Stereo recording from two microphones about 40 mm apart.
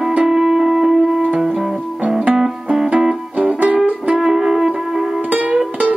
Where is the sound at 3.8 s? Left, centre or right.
Right.